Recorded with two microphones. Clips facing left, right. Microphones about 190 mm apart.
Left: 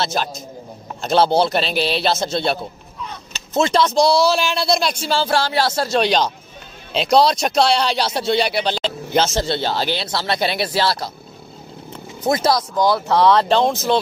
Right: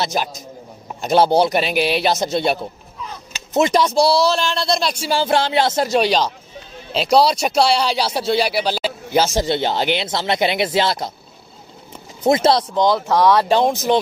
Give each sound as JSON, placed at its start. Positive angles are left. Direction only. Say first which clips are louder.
{"t": 0.0, "sound": "speech", "louder": "even", "side_deg": -15}
{"t": 5.0, "sound": "speech", "louder": "right 1 dB", "side_deg": -15}
{"t": 5.9, "sound": "speech", "louder": "left 1 dB", "side_deg": -5}
{"t": 12.3, "sound": "speech", "louder": "right 3 dB", "side_deg": -25}